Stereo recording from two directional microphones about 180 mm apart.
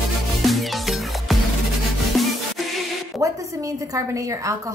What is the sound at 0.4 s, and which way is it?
Music, centre (ahead or behind).